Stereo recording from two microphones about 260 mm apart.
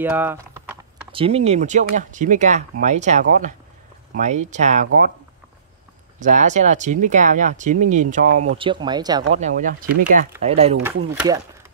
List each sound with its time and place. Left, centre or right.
0.0 s typing: centre
1.1 s speech: right
6.1 s speech: right
8.5 s speech: centre
9.3 s speech: right